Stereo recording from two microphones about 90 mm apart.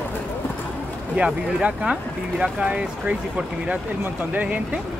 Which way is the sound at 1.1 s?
10° right (ahead or behind).